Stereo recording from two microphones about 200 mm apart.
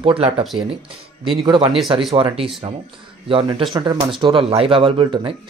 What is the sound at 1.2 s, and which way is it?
Speech, 25° right (ahead or behind).